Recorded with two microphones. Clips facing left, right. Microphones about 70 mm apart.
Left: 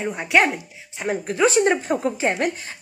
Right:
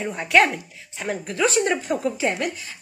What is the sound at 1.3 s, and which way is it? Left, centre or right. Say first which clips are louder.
A woman's voice: left 3 dB; left.